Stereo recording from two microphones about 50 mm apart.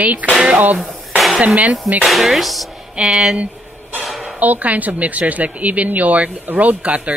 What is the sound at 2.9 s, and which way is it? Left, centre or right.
Speech, centre.